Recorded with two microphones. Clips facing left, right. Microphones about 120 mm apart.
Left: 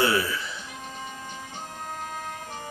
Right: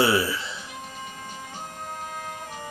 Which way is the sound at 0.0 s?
25° right (ahead or behind).